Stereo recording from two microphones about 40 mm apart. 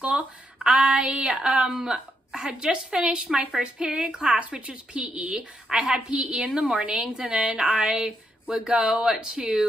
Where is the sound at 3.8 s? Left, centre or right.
Right.